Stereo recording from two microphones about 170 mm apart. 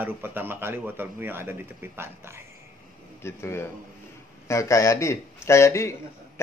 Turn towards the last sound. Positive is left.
turn(degrees=15)  # may be behind; listen again after turning